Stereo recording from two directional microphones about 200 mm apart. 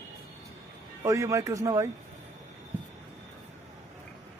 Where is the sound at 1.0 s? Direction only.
15° right (ahead or behind).